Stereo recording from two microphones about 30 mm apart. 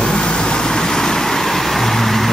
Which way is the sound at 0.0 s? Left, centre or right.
Left.